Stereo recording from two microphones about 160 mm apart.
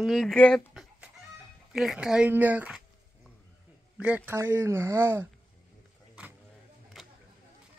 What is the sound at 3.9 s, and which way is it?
Speech, 10° right (ahead or behind).